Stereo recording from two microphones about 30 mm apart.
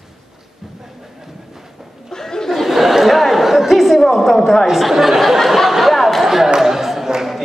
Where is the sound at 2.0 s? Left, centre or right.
Centre.